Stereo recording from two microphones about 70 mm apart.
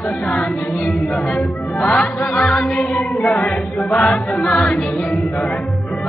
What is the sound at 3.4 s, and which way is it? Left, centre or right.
A capella, centre.